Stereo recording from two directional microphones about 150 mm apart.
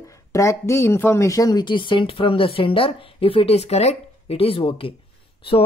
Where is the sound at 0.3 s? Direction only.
20° left (ahead or behind).